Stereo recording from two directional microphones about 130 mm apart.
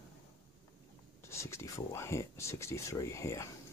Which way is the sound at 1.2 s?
20° left (ahead or behind).